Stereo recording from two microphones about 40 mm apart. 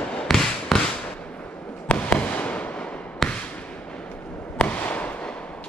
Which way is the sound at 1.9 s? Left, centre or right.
Left.